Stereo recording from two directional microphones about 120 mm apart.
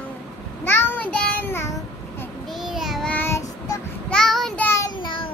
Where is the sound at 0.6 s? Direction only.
20° left (ahead or behind).